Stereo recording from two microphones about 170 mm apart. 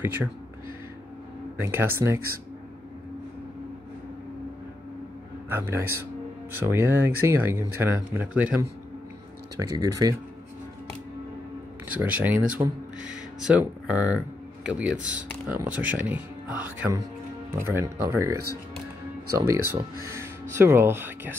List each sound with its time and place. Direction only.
1.6 s speech: 15° right (ahead or behind)
5.5 s speech: 15° right (ahead or behind)
9.6 s speech: 20° right (ahead or behind)
12.0 s speech: 10° right (ahead or behind)